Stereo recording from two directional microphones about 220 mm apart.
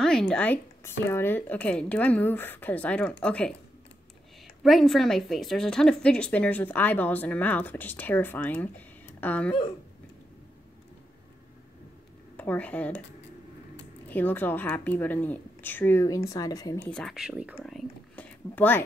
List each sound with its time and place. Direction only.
0.0 s a woman's voice: 5° left (ahead or behind)
4.6 s a woman's voice: centre (ahead or behind)
12.4 s a woman's voice: 5° left (ahead or behind)
14.0 s a woman's voice: 10° left (ahead or behind)
16.9 s speech: centre (ahead or behind)